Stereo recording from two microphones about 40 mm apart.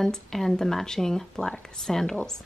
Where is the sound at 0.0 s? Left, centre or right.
Centre.